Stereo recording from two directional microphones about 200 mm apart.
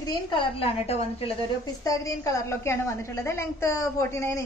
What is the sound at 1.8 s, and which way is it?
A woman's voice, 15° left (ahead or behind).